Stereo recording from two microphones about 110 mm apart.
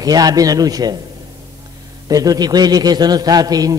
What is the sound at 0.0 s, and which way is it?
A man's voice, 35° right (ahead or behind).